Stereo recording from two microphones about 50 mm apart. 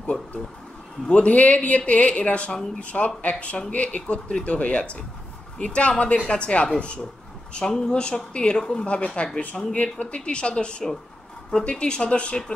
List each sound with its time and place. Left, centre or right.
0.0 s speech: left